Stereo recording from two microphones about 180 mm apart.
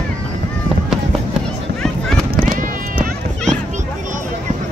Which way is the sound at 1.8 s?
5° left (ahead or behind).